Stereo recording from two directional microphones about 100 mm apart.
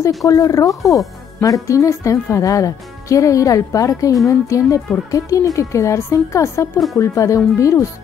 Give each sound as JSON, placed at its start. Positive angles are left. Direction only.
{"t": 0.2, "sound": "speech", "side_deg": 35}